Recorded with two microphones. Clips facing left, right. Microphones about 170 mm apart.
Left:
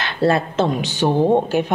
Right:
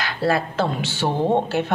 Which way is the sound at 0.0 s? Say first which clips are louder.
Left 4 dB; 25° left (ahead or behind).